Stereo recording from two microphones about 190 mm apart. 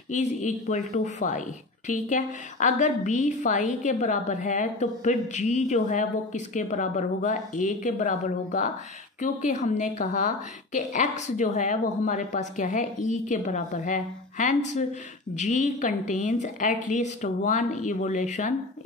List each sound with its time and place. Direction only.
0.1 s a woman's voice: 40° left (ahead or behind)